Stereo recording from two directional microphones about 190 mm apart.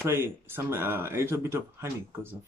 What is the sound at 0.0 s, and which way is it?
Speech, 10° right (ahead or behind).